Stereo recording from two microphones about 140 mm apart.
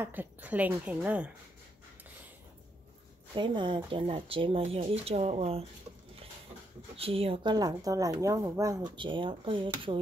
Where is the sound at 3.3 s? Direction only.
35° right (ahead or behind).